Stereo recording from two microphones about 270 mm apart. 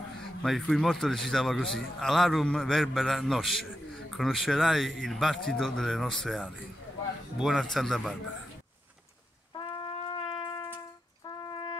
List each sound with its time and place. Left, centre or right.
0.4 s a man's voice: centre
9.5 s brass instrument: centre
11.2 s brass instrument: centre